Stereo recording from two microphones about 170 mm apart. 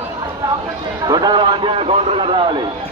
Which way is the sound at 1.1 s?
25° right (ahead or behind).